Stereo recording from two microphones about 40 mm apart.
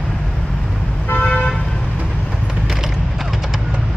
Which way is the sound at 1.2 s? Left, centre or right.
Left.